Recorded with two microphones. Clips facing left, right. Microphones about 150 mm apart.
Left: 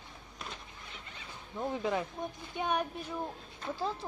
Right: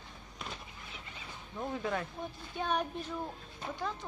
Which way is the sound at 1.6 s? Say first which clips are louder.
Left 3 dB; 15° left (ahead or behind).